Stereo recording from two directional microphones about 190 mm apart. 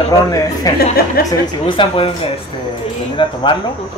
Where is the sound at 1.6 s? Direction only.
25° left (ahead or behind).